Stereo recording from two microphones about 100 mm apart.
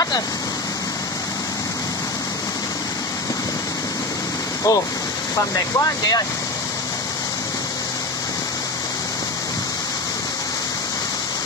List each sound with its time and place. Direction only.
4.7 s speech: 35° left (ahead or behind)